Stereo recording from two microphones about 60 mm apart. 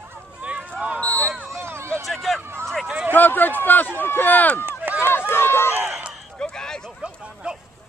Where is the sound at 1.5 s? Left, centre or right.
Right.